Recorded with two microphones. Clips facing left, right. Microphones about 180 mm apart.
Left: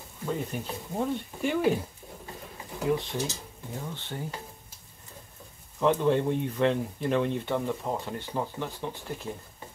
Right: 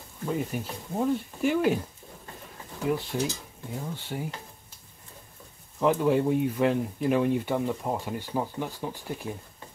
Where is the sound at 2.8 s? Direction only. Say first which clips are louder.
Right 1 dB; 5° right (ahead or behind).